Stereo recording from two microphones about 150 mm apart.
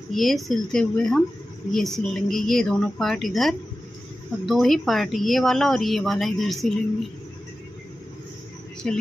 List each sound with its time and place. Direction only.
0.1 s speech: centre (ahead or behind)
8.8 s speech: 5° left (ahead or behind)